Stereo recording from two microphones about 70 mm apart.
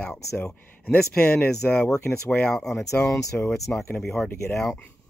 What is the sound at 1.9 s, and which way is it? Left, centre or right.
Speech, left.